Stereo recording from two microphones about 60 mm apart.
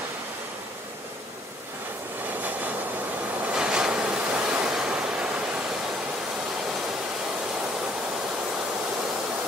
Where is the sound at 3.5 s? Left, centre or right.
Centre.